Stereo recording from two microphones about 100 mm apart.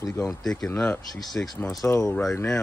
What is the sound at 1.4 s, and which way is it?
Speech, 20° left (ahead or behind).